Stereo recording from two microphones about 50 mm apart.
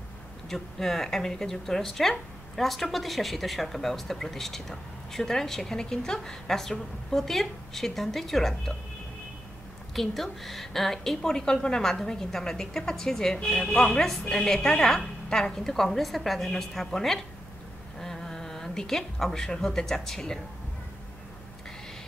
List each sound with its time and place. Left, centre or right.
0.5 s speech: centre
9.9 s a woman's voice: centre